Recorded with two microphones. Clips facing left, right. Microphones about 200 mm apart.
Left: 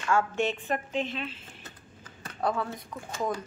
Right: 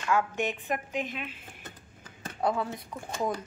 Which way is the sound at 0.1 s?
15° right (ahead or behind).